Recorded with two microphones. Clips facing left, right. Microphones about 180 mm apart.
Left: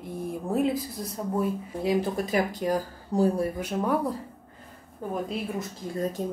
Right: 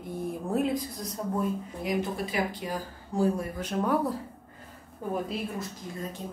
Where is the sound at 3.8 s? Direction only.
Centre (ahead or behind).